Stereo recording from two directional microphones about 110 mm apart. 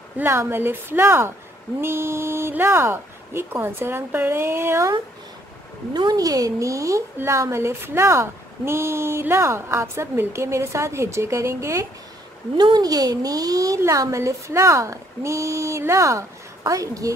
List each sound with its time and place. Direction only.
0.2 s a woman's voice: 20° right (ahead or behind)
5.9 s a woman's voice: 35° right (ahead or behind)
12.5 s a woman's voice: 40° right (ahead or behind)